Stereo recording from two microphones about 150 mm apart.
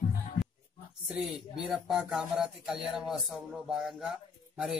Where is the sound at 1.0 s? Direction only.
5° right (ahead or behind).